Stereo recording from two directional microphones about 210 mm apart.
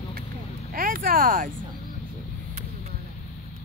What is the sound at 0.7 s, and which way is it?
Speech, 40° right (ahead or behind).